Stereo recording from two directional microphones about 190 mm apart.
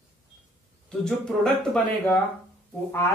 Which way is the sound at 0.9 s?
5° left (ahead or behind).